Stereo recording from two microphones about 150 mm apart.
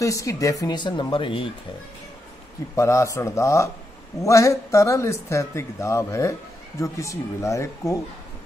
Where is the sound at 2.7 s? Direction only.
20° left (ahead or behind).